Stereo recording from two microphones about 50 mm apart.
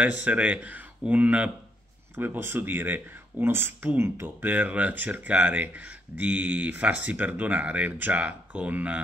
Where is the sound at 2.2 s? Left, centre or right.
Right.